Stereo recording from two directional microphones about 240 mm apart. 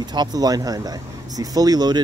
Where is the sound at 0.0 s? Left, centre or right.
Centre.